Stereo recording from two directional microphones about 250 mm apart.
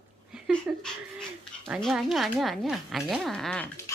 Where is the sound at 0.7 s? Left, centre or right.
Centre.